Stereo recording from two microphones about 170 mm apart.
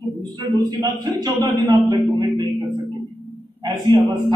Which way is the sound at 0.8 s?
20° right (ahead or behind).